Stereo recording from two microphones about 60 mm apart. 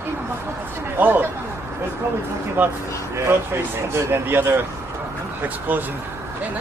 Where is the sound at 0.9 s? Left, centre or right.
Right.